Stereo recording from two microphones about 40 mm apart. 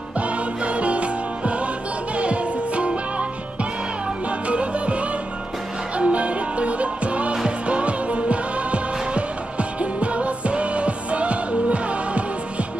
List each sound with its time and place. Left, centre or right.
0.2 s music: right
4.5 s music: right